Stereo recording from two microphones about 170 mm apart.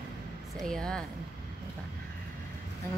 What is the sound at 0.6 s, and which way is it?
Speech, 5° left (ahead or behind).